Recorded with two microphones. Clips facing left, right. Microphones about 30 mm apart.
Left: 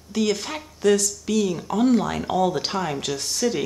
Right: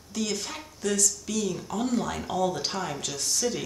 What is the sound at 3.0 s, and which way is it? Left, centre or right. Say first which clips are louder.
Speech: left 5 dB; left.